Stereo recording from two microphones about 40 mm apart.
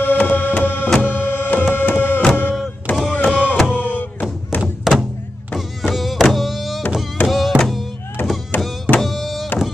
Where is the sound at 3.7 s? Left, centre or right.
Right.